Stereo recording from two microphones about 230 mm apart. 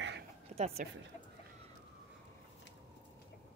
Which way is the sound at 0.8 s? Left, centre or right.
Right.